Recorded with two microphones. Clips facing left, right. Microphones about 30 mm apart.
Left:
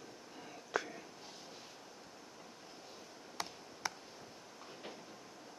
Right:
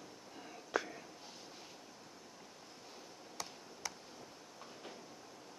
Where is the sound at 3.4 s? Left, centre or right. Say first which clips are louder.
Left 4 dB; left.